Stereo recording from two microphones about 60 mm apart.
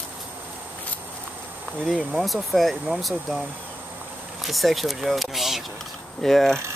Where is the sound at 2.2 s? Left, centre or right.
Centre.